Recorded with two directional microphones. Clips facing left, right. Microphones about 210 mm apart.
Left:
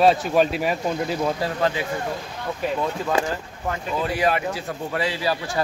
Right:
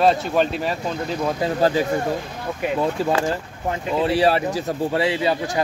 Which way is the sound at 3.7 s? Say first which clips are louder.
Right 5 dB; 30° right (ahead or behind).